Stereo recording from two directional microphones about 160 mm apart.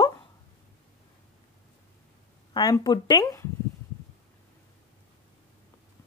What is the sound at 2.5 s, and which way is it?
Speech, 25° left (ahead or behind).